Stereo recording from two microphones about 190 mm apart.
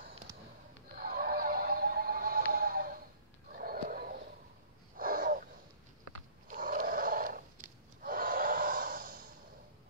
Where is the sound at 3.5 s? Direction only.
50° right (ahead or behind).